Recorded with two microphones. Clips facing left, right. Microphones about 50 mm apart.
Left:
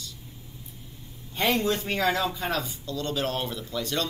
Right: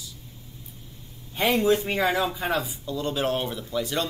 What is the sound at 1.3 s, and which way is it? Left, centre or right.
Speech, centre.